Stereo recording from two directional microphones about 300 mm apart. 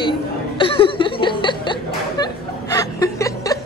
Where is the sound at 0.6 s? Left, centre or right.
Centre.